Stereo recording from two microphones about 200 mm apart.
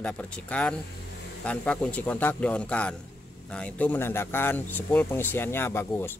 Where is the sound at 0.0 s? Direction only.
5° left (ahead or behind).